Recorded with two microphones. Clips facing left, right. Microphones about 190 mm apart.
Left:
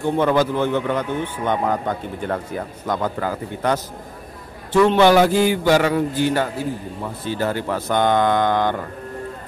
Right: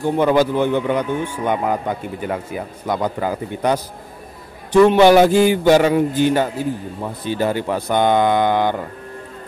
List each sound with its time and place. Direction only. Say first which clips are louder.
0.2 s a man's voice: right 3 dB; 15° right (ahead or behind)
4.8 s a man's voice: right 3 dB; 15° right (ahead or behind)